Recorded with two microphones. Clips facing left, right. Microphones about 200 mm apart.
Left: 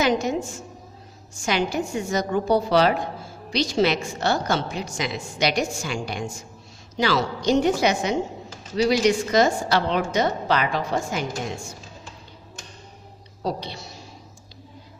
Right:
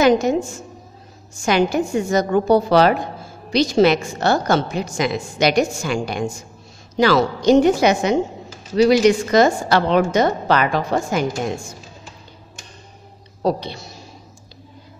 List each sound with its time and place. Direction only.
0.0 s a woman's voice: 50° right (ahead or behind)
1.4 s a woman's voice: 50° right (ahead or behind)
13.4 s a woman's voice: 50° right (ahead or behind)